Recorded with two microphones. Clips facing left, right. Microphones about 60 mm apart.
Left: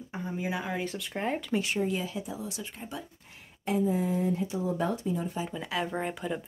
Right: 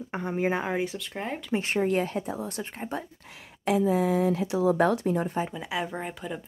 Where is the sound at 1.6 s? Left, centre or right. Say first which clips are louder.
Right 4 dB; right.